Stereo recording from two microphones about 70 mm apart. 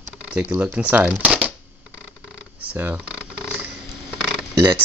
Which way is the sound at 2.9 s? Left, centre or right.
Centre.